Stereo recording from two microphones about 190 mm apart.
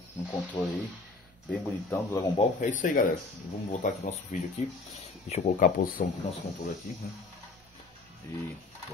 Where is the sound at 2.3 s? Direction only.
40° left (ahead or behind).